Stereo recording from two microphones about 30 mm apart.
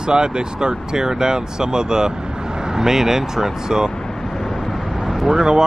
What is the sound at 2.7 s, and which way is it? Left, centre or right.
Speech, centre.